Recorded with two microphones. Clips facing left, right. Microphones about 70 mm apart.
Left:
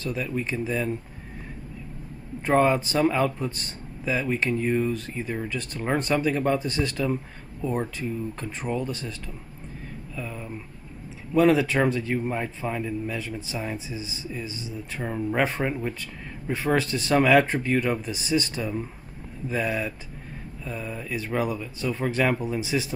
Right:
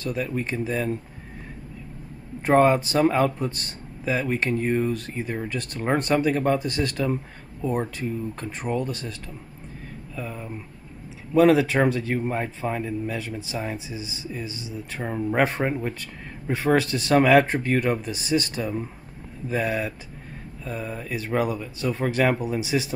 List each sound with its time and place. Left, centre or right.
0.0 s speech: right
2.5 s speech: right
7.9 s speech: right
12.2 s speech: right
13.9 s speech: centre
15.3 s speech: right
16.5 s speech: right
17.1 s speech: right
18.6 s speech: right
22.5 s speech: right